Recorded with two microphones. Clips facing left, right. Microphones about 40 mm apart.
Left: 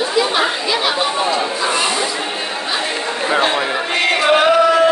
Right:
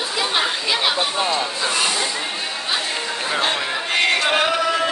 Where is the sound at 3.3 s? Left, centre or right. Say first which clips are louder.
Left 6 dB; centre.